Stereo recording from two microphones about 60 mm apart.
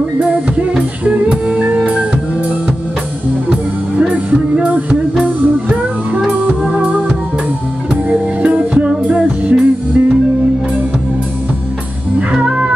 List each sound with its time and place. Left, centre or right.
0.2 s music: centre
4.1 s music: right
12.3 s music: centre